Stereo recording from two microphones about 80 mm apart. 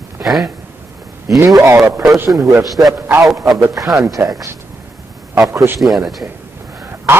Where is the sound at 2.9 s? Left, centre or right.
Right.